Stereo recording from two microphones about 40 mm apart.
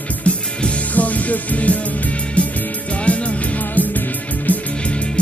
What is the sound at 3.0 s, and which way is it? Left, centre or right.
Music, left.